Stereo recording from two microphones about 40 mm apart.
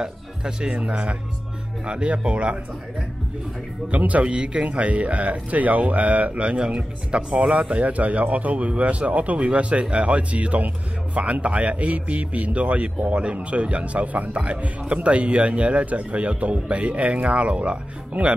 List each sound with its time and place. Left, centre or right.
0.0 s speech: centre
3.9 s speech: right